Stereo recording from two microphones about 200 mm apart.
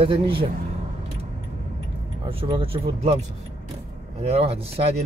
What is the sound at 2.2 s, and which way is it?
Speech, 25° right (ahead or behind).